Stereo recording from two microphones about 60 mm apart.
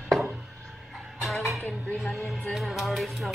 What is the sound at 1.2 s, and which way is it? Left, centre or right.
Music, centre.